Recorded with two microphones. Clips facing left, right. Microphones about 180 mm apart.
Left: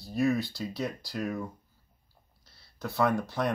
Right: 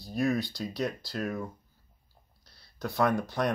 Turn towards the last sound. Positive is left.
turn(degrees=5)  # may be behind; listen again after turning